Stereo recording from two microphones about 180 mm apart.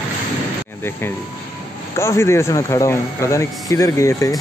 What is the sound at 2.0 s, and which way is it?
Speech, 15° left (ahead or behind).